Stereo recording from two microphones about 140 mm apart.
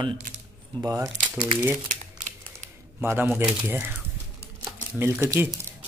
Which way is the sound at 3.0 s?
15° right (ahead or behind).